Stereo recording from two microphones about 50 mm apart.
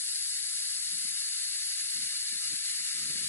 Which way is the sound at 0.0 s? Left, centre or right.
Left.